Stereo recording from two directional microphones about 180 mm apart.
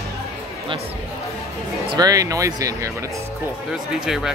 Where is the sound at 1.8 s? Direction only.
25° right (ahead or behind).